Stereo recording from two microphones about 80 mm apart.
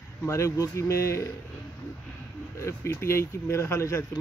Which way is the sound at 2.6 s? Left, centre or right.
Left.